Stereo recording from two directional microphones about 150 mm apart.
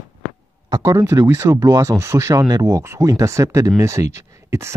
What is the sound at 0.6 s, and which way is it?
Speech, 20° right (ahead or behind).